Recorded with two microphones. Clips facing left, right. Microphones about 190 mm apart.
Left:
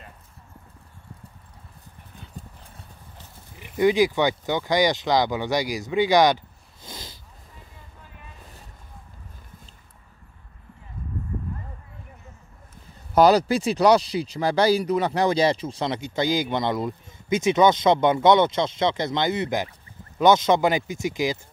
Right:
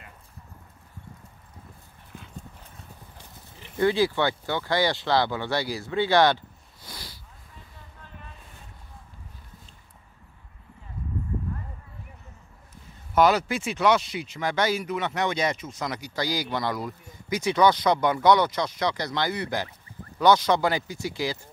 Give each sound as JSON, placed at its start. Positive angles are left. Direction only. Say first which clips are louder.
{"t": 3.5, "sound": "speech", "louder": "left 4 dB", "side_deg": 15}
{"t": 13.1, "sound": "speech", "louder": "left 4 dB", "side_deg": 35}